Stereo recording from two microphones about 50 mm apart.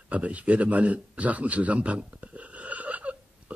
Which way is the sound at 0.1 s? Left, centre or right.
Right.